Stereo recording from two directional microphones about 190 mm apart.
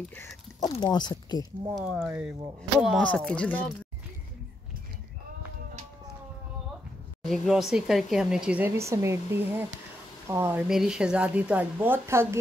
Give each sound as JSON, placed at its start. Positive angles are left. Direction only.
{"t": 0.1, "sound": "a sound", "side_deg": 5}
{"t": 0.7, "sound": "speech", "side_deg": 25}
{"t": 1.8, "sound": "speech", "side_deg": 0}
{"t": 7.2, "sound": "speech", "side_deg": 0}